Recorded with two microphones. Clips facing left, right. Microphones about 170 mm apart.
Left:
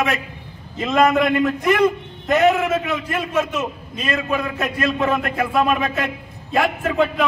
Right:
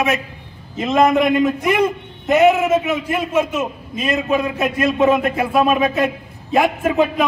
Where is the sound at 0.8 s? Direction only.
20° right (ahead or behind).